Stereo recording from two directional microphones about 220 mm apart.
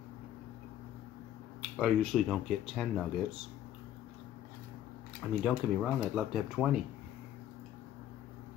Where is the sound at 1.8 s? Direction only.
Centre (ahead or behind).